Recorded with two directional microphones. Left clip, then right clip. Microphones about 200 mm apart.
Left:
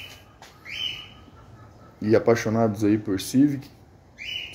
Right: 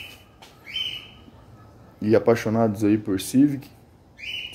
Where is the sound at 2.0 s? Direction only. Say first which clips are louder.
Right 1 dB; 10° right (ahead or behind).